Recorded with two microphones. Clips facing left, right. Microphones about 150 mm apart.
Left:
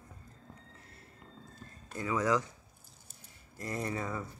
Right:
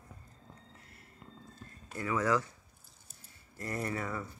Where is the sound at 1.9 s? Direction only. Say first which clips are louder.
Even; 20° left (ahead or behind).